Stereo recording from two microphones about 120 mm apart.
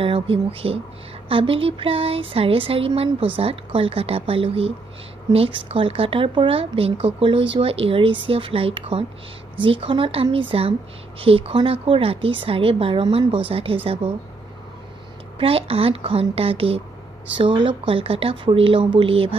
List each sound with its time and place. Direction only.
0.0 s speech: 50° right (ahead or behind)
15.3 s speech: 50° right (ahead or behind)